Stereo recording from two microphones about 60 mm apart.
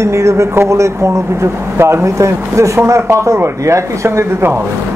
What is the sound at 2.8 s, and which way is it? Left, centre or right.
Speech, right.